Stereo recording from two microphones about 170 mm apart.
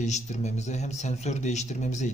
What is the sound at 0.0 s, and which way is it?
Speech, 45° left (ahead or behind).